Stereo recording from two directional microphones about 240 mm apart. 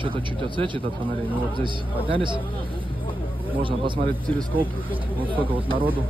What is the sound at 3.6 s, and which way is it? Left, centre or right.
Speech, centre.